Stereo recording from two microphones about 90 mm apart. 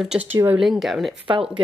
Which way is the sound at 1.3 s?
65° right (ahead or behind).